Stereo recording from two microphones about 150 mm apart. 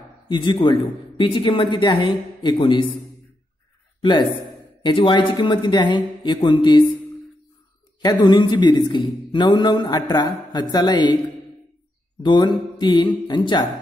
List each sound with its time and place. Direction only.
0.3 s speech: 30° left (ahead or behind)
4.0 s a man's voice: 30° left (ahead or behind)
8.0 s a man's voice: 30° left (ahead or behind)
12.2 s speech: 30° left (ahead or behind)